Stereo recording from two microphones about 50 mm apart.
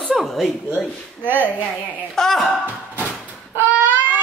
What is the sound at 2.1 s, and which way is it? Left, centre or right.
Speech, centre.